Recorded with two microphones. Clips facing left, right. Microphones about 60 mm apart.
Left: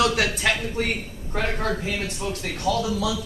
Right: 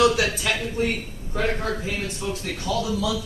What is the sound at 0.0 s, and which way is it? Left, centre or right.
Speech, left.